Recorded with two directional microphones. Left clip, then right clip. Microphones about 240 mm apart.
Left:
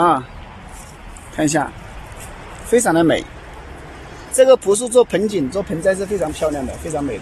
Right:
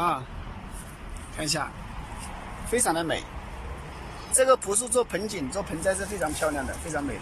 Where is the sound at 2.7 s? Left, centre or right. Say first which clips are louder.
Left 12 dB; left.